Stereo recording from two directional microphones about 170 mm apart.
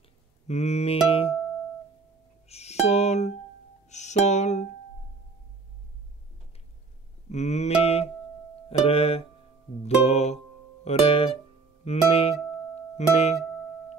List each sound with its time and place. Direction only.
0.0 s music: 40° left (ahead or behind)
2.4 s music: 40° left (ahead or behind)
7.2 s music: 40° left (ahead or behind)